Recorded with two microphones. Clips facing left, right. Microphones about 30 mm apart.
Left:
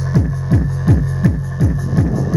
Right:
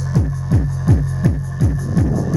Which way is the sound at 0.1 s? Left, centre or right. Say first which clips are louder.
Left 3 dB; left.